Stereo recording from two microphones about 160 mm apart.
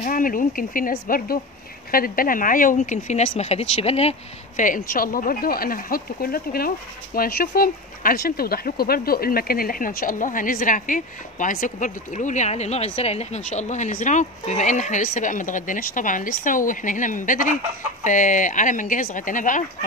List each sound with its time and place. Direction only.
0.0 s speech: 60° left (ahead or behind); by 4.1 s 40° left (ahead or behind)
4.6 s speech: 60° left (ahead or behind)